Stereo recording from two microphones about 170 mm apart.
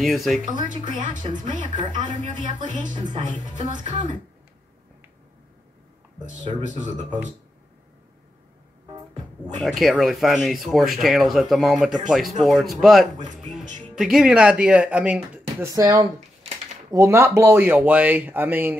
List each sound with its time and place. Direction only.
0.0 s speech: centre (ahead or behind)
0.8 s speech: 50° right (ahead or behind)
6.2 s speech: 45° right (ahead or behind)
9.6 s speech: centre (ahead or behind); by 16.1 s 20° right (ahead or behind)
16.5 s a sound: 40° right (ahead or behind)
16.9 s speech: 15° right (ahead or behind)